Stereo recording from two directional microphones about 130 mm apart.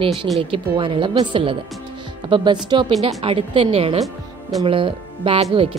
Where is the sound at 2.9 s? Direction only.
55° right (ahead or behind).